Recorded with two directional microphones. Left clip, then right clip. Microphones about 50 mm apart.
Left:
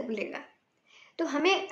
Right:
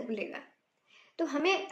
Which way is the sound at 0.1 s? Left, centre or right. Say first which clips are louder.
Left 3 dB; left.